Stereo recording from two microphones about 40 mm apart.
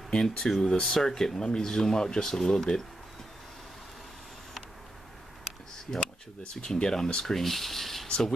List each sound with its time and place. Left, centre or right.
0.2 s speech: centre
5.9 s speech: centre
7.3 s a sound: centre
8.1 s speech: centre